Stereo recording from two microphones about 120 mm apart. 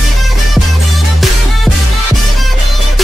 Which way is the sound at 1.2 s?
Centre (ahead or behind).